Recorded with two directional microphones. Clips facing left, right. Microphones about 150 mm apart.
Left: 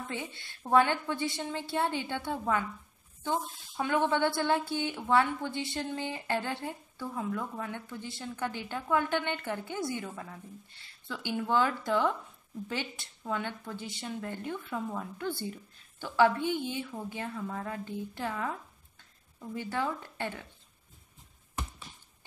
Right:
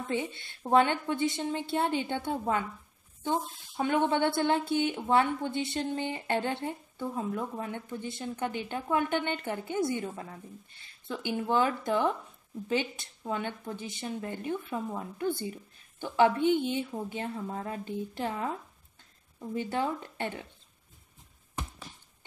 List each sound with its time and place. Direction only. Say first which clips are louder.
0.1 s speech: right 6 dB; 20° right (ahead or behind)